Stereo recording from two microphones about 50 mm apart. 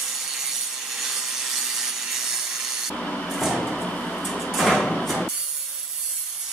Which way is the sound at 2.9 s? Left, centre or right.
Centre.